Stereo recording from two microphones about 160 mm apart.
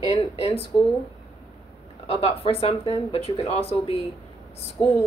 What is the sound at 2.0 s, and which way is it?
Speech, 35° left (ahead or behind).